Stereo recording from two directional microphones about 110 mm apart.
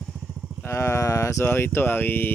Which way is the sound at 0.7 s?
25° left (ahead or behind).